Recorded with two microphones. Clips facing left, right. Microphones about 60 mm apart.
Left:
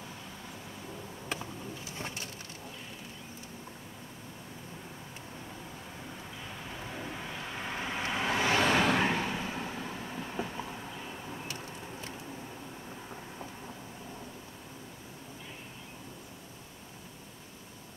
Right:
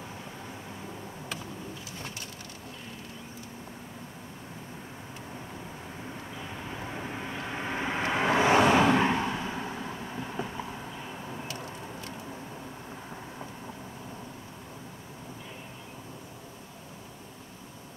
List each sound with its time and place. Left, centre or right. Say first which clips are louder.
6.8 s vehicle: right 3 dB; right